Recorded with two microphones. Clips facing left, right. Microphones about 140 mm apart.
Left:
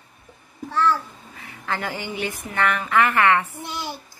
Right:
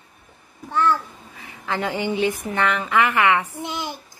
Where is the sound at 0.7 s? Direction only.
15° right (ahead or behind).